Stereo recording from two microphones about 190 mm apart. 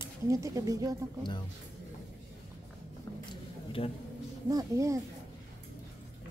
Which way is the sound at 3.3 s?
30° left (ahead or behind).